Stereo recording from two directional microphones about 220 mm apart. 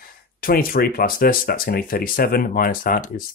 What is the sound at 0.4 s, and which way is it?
Speech, 40° left (ahead or behind).